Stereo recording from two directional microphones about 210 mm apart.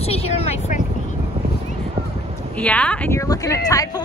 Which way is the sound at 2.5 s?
5° left (ahead or behind).